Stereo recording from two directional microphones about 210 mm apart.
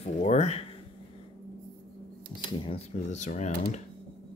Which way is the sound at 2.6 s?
30° left (ahead or behind).